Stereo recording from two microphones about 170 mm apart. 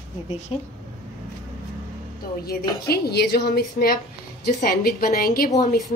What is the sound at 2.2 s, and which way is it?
A woman's voice, 60° left (ahead or behind).